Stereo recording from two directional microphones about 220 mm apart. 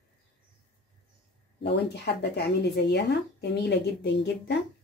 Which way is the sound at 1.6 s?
50° left (ahead or behind).